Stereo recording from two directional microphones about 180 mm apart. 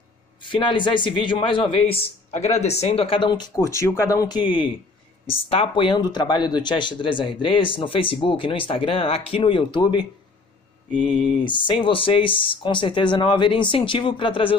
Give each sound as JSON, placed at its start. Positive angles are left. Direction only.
{"t": 0.4, "sound": "speech", "side_deg": 25}
{"t": 10.9, "sound": "speech", "side_deg": -5}
{"t": 11.2, "sound": "speech", "side_deg": 25}